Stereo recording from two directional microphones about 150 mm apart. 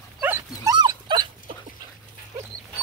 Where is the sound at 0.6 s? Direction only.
25° right (ahead or behind).